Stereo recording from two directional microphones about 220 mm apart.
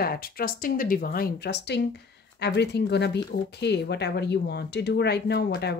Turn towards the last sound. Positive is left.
turn(degrees=50)  # may be behind; listen again after turning